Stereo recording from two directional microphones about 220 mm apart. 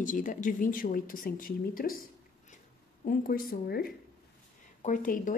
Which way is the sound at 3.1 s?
40° left (ahead or behind).